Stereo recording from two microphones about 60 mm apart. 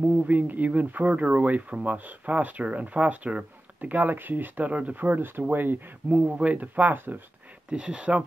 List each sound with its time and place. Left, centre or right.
0.3 s speech: right
7.7 s speech: right